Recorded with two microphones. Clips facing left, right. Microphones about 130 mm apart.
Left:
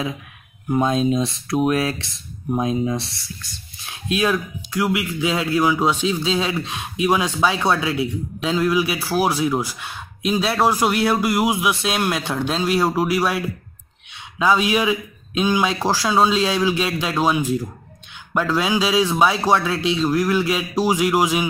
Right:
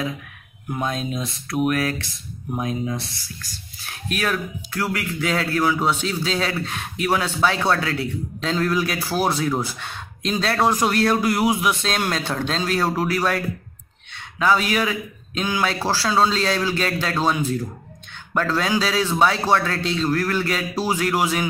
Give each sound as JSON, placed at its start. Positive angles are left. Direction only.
{"t": 0.7, "sound": "speech", "side_deg": 25}